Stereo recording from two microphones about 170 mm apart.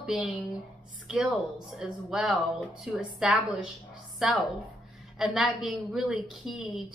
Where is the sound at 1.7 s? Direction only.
5° right (ahead or behind).